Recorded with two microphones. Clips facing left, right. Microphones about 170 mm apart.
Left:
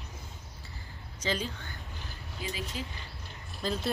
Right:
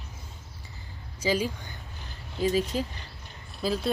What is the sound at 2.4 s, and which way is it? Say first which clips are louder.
Speech: right 13 dB; 40° right (ahead or behind).